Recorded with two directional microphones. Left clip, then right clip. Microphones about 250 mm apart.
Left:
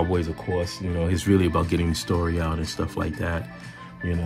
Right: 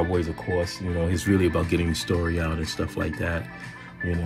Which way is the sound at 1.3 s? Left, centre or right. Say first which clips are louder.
Left 1 dB; left.